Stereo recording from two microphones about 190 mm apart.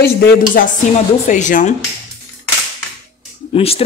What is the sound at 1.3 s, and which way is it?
Speech, 40° left (ahead or behind).